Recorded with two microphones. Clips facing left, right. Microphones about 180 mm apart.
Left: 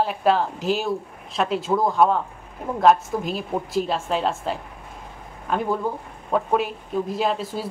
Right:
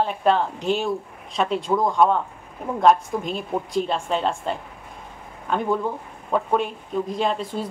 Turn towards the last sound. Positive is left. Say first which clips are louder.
# even
turn(degrees=5)  # may be behind; listen again after turning